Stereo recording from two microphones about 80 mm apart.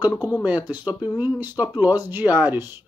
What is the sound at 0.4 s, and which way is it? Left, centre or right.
Speech, right.